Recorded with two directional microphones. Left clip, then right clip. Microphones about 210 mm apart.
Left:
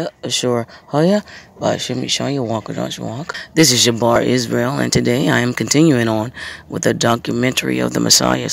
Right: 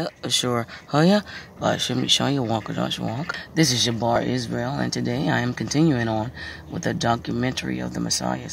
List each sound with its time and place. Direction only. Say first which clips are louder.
0.0 s speech: left 4 dB; 10° left (ahead or behind); by 8.5 s 40° left (ahead or behind)